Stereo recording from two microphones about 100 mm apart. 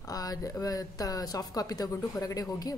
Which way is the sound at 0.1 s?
40° left (ahead or behind).